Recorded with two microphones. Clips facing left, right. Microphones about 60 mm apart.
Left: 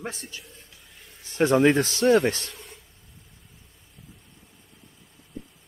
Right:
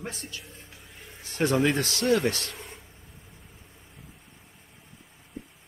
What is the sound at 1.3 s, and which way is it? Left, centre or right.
Speech, left.